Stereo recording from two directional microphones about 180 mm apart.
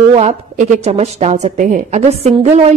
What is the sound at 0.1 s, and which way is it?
A woman's voice, 35° right (ahead or behind).